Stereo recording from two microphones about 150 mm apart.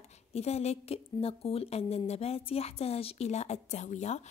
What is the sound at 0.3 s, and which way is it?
A woman's voice, 45° left (ahead or behind).